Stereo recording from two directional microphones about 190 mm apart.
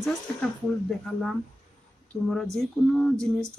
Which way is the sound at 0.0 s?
Centre (ahead or behind).